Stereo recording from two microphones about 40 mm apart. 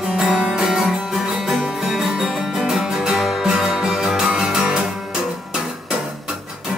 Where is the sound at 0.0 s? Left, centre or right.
Centre.